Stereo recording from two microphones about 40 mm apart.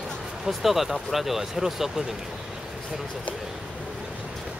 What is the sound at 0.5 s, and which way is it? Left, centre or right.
Speech, centre.